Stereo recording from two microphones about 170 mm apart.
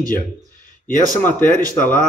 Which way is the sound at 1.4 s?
55° left (ahead or behind).